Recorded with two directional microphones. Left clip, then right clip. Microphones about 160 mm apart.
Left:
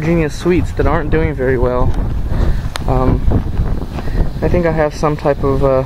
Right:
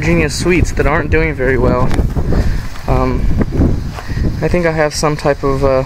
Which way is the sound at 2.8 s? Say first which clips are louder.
Right 1 dB; centre (ahead or behind).